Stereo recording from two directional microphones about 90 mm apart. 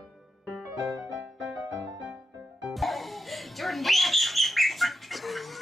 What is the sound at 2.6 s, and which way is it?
Music, centre (ahead or behind).